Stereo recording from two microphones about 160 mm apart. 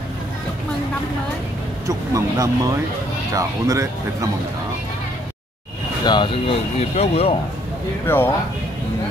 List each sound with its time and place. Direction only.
1.9 s speech: 20° right (ahead or behind)
6.0 s speech: 30° left (ahead or behind)
8.1 s speech: 15° left (ahead or behind)